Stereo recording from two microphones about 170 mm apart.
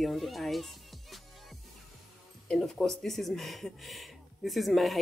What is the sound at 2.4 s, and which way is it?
Speech, 5° left (ahead or behind).